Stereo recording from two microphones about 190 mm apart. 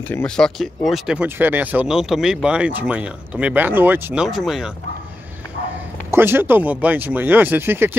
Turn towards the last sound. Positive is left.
turn(degrees=-10)  # may be behind; listen again after turning